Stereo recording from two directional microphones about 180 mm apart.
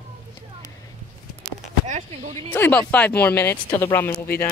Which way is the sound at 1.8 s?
40° right (ahead or behind).